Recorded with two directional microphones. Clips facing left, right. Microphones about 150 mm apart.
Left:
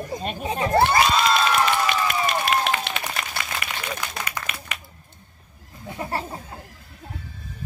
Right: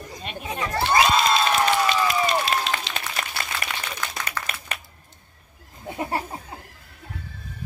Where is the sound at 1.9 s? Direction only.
55° left (ahead or behind).